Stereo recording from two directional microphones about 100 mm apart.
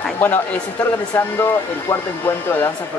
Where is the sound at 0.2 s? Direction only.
20° left (ahead or behind).